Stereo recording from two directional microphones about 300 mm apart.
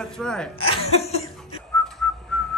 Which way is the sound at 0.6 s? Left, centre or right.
Centre.